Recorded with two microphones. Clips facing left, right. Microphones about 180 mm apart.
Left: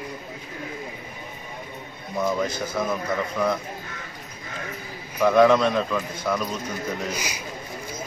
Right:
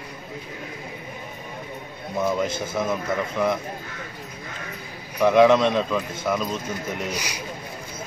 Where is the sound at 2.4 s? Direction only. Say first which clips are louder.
Right 1 dB; 25° right (ahead or behind).